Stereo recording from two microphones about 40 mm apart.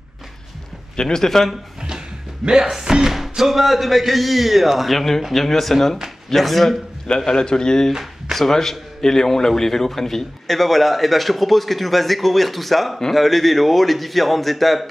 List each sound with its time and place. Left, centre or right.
0.9 s speech: centre
2.4 s speech: centre
3.1 s a man's voice: centre
7.2 s a man's voice: centre
8.0 s a sound: centre
8.5 s a man's voice: centre